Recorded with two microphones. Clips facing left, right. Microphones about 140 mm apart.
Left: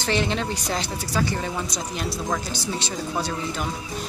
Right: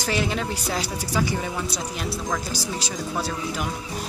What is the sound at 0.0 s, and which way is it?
Speech, 5° right (ahead or behind).